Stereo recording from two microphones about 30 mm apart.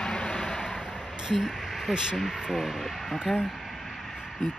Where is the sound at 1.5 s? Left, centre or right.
Centre.